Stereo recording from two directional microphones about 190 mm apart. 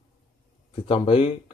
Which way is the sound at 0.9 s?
30° left (ahead or behind).